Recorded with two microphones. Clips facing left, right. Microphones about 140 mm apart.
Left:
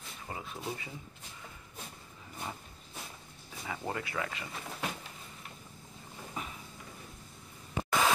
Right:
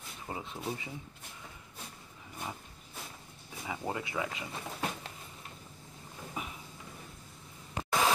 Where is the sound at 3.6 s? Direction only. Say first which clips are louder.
Right 1 dB; 10° right (ahead or behind).